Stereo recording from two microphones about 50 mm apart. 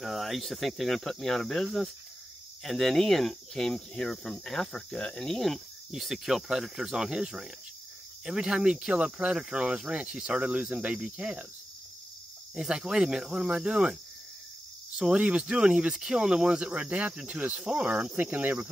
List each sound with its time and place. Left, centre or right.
0.0 s speech: centre; by 11.4 s right
12.5 s speech: centre
15.1 s speech: right
18.1 s speech: right